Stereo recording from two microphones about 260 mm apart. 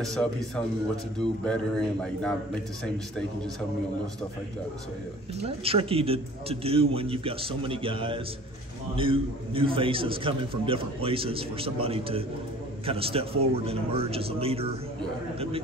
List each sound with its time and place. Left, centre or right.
0.0 s a man's voice: centre
5.4 s a man's voice: right